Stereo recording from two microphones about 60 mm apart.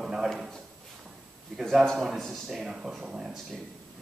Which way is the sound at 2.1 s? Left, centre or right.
Centre.